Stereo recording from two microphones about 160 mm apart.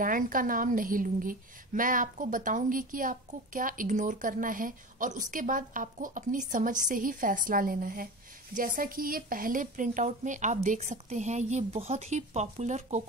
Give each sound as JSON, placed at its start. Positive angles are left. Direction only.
{"t": 0.0, "sound": "a woman's voice", "side_deg": -60}